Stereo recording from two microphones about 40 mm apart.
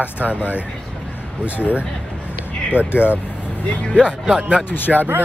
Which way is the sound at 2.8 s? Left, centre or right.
Right.